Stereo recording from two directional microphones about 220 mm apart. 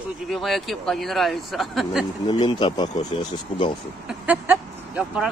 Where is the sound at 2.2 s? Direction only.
20° left (ahead or behind).